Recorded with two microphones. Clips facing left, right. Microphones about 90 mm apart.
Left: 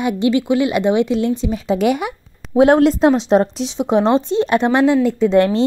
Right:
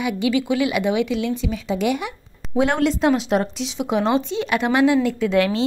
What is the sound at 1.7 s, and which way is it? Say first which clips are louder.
Speech: left 5 dB; 55° left (ahead or behind).